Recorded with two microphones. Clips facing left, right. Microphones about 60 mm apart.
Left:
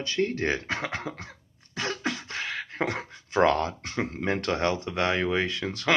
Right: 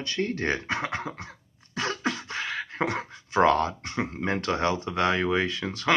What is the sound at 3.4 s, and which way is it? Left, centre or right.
Speech, right.